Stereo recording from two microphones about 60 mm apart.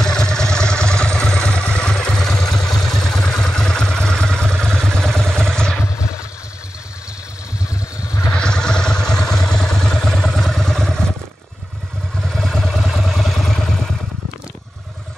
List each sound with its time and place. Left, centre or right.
0.0 s vehicle: centre
5.9 s a sound: left
8.3 s vehicle: centre
12.3 s vehicle: centre